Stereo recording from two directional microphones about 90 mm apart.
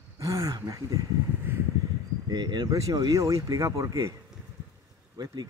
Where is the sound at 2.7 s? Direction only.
45° right (ahead or behind).